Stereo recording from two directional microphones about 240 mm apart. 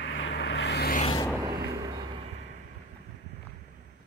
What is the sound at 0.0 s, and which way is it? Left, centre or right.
Vehicle, left.